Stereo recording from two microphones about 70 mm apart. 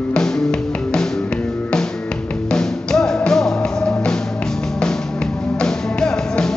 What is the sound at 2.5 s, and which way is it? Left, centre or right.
Music, centre.